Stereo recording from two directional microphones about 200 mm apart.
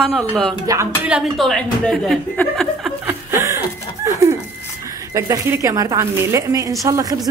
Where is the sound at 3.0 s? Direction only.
15° right (ahead or behind).